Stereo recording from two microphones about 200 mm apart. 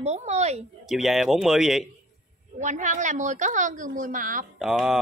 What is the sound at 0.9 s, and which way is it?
Speech, centre (ahead or behind).